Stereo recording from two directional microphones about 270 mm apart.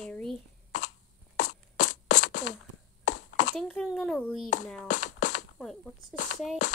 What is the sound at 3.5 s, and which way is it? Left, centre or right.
Speech, centre.